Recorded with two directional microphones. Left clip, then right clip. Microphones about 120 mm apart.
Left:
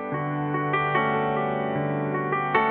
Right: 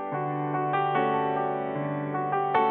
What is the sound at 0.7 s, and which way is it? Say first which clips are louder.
Music: left 2 dB; 15° left (ahead or behind).